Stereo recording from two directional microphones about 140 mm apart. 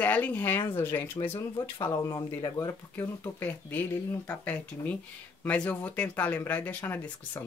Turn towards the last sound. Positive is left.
turn(degrees=15)  # may be behind; listen again after turning